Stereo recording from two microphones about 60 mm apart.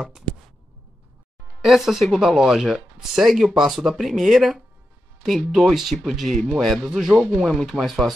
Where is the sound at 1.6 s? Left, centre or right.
Centre.